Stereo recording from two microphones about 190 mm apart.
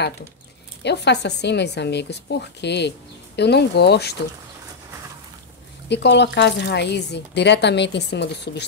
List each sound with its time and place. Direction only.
0.8 s speech: 65° left (ahead or behind)
5.9 s speech: 65° left (ahead or behind)